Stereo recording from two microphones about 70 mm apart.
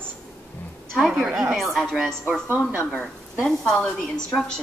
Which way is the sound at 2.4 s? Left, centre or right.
Right.